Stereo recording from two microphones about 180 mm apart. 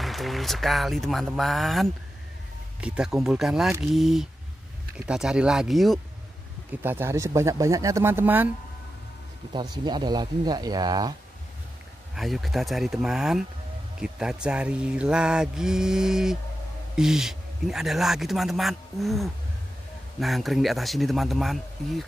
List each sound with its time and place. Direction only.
0.0 s speech: centre (ahead or behind)
6.8 s speech: 10° right (ahead or behind)
9.5 s speech: 25° right (ahead or behind)
12.2 s speech: centre (ahead or behind)